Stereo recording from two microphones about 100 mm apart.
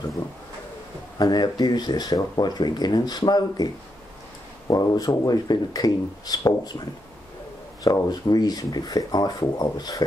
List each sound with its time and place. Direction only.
1.1 s speech: 45° left (ahead or behind)
7.8 s speech: 40° left (ahead or behind)